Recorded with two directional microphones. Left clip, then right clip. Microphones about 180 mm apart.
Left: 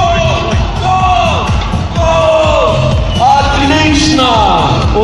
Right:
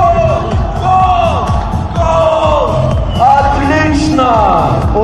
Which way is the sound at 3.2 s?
10° left (ahead or behind).